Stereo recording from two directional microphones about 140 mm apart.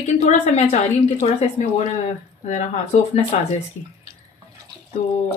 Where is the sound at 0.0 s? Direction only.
50° left (ahead or behind).